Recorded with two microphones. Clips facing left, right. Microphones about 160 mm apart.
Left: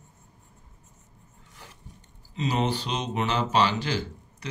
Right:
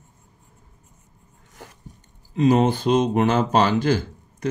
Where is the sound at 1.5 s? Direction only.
45° right (ahead or behind).